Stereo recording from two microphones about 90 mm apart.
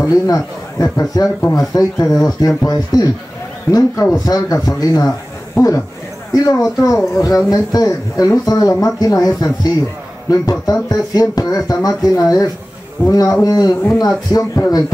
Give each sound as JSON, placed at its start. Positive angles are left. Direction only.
{"t": 0.0, "sound": "a man's voice", "side_deg": 35}
{"t": 6.3, "sound": "speech", "side_deg": 40}